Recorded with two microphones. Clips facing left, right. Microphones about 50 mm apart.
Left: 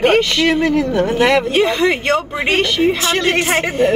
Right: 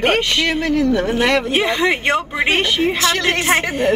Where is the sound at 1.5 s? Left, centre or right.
Centre.